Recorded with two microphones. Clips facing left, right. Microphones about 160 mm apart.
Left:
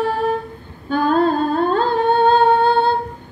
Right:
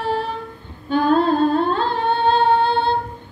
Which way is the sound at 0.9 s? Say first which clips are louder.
Even; 45° left (ahead or behind).